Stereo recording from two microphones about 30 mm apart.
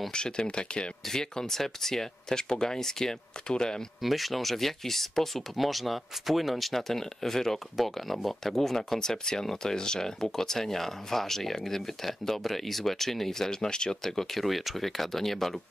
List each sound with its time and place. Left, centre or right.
0.1 s speech: left
1.1 s speech: centre
4.0 s speech: centre
6.9 s speech: centre
7.7 s speech: centre; by 13.9 s left
14.0 s speech: centre